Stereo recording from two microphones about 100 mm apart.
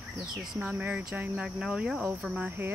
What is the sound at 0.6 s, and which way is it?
Speech, 15° right (ahead or behind).